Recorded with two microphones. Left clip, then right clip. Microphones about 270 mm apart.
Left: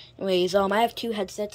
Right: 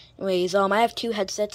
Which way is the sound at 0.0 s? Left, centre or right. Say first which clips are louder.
Even; centre.